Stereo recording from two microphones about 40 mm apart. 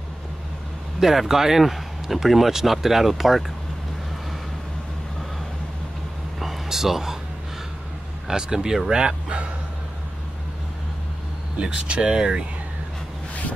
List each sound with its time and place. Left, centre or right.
1.0 s speech: centre
6.4 s a sound: centre
8.3 s speech: centre
11.6 s speech: right